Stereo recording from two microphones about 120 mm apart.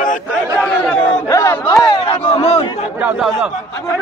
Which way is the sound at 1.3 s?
25° left (ahead or behind).